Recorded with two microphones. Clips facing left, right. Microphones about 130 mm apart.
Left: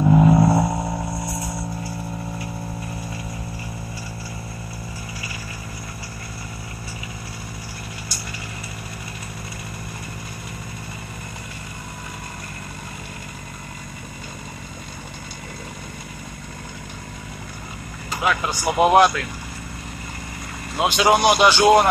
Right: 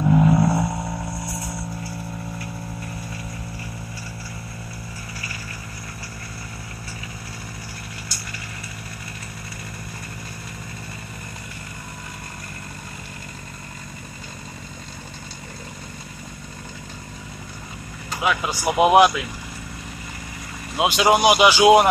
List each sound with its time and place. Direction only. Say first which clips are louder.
0.0 s vehicle: left 2 dB; 25° left (ahead or behind)
18.2 s speech: even; 5° right (ahead or behind)
20.7 s speech: even; 5° right (ahead or behind)